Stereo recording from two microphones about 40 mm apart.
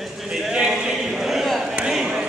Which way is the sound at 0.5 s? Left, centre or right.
Right.